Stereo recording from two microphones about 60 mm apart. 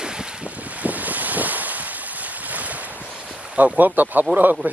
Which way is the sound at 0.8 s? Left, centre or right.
Right.